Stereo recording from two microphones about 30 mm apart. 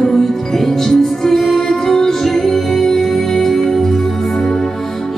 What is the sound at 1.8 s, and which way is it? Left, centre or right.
Music, centre.